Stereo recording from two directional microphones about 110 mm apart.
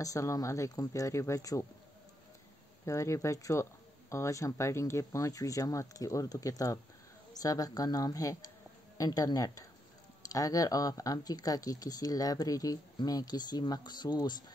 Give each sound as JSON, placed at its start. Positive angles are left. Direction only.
{"t": 0.0, "sound": "speech", "side_deg": 30}
{"t": 2.8, "sound": "speech", "side_deg": 25}